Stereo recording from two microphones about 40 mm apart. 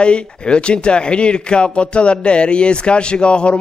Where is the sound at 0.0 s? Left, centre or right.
Left.